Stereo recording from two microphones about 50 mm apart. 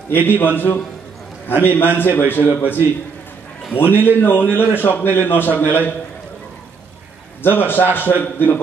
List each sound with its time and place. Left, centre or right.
0.1 s a man's voice: left
1.5 s a man's voice: left
7.4 s a man's voice: left